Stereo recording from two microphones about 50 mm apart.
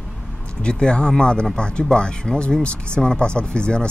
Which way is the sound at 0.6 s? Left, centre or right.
Centre.